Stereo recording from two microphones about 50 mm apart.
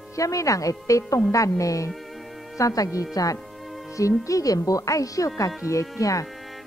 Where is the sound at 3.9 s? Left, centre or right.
Left.